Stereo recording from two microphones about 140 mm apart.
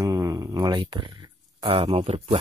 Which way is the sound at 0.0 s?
25° right (ahead or behind).